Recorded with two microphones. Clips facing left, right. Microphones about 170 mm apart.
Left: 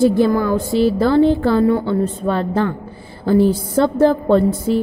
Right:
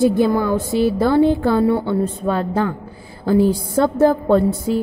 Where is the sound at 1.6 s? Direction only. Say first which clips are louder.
Left 1 dB; 25° right (ahead or behind).